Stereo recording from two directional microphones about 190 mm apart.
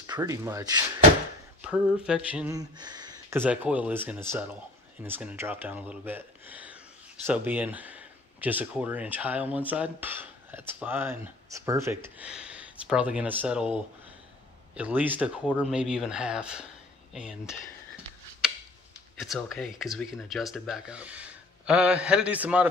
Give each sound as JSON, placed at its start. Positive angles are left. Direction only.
{"t": 0.0, "sound": "speech", "side_deg": -15}
{"t": 1.6, "sound": "speech", "side_deg": -5}
{"t": 2.5, "sound": "speech", "side_deg": -20}
{"t": 14.8, "sound": "speech", "side_deg": -10}
{"t": 18.4, "sound": "tick-tock", "side_deg": -5}
{"t": 19.1, "sound": "speech", "side_deg": 0}